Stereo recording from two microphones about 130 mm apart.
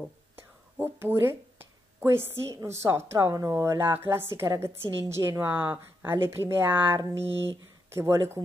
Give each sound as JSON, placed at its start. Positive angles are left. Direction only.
{"t": 0.0, "sound": "speech", "side_deg": -15}